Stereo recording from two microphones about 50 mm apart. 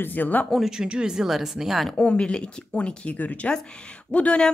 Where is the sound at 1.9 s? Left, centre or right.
Left.